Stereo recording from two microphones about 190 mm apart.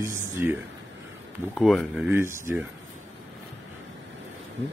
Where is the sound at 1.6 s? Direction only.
Centre (ahead or behind).